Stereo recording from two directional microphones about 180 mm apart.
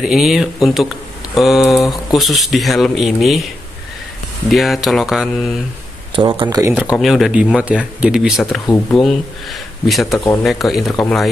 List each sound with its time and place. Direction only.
0.0 s speech: centre (ahead or behind)
4.5 s speech: centre (ahead or behind)
6.1 s speech: 30° right (ahead or behind)
6.6 s speech: 10° right (ahead or behind)